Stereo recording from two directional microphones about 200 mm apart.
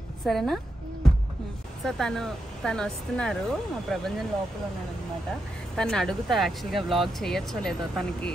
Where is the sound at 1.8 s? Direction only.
Centre (ahead or behind).